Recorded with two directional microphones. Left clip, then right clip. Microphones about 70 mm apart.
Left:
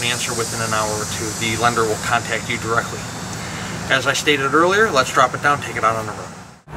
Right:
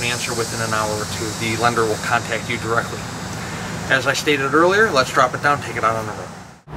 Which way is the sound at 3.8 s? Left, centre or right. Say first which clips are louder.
Left 1 dB; centre.